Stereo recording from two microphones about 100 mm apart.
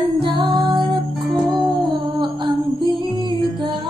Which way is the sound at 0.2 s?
55° right (ahead or behind).